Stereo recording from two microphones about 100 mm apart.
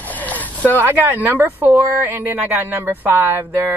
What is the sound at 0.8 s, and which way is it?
Speech, 20° right (ahead or behind).